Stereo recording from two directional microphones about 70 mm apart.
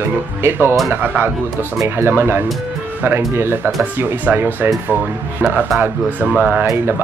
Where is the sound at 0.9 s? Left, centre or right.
Right.